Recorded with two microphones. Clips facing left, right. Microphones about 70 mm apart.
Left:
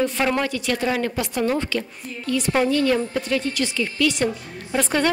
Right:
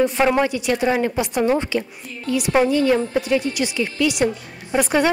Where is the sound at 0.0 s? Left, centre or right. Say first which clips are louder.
Right 4 dB; centre.